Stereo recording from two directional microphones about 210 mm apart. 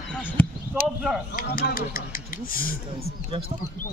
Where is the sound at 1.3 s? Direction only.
40° left (ahead or behind).